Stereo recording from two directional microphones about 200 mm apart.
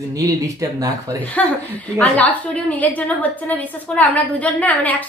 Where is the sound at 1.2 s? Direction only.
5° left (ahead or behind).